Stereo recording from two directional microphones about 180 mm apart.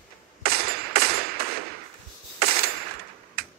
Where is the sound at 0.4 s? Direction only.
60° right (ahead or behind).